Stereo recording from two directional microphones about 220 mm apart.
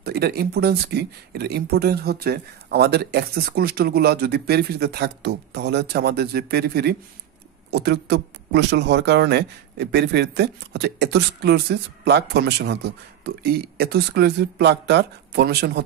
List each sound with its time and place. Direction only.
0.0 s speech: 45° right (ahead or behind)